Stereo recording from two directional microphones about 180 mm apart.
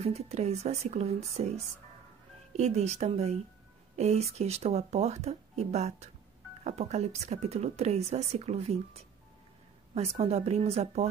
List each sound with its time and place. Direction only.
0.0 s speech: 35° right (ahead or behind)
2.5 s speech: 40° right (ahead or behind)